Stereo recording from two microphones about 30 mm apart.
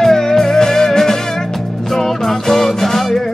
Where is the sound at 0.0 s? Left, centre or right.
Centre.